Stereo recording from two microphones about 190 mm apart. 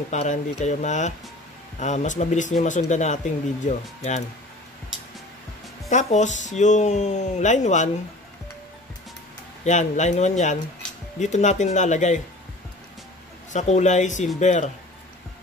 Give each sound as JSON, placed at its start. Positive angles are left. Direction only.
{"t": 0.1, "sound": "speech", "side_deg": 35}
{"t": 5.9, "sound": "speech", "side_deg": 40}
{"t": 9.7, "sound": "speech", "side_deg": 40}
{"t": 13.5, "sound": "speech", "side_deg": 35}